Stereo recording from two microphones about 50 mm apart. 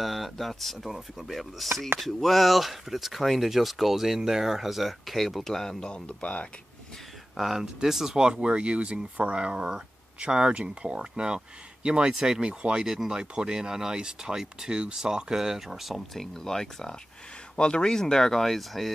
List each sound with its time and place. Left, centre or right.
0.0 s speech: centre; by 6.4 s left
7.3 s speech: centre
16.2 s speech: centre